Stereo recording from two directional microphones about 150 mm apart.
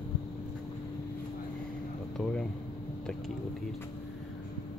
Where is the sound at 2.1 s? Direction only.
5° left (ahead or behind).